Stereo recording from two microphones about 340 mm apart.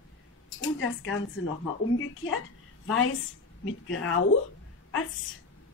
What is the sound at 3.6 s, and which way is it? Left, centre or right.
Speech, left.